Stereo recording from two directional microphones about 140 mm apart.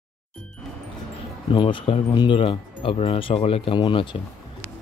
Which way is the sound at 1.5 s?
35° left (ahead or behind).